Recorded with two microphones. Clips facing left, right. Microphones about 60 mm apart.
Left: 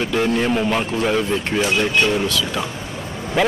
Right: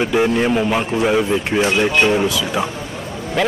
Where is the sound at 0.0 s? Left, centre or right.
Centre.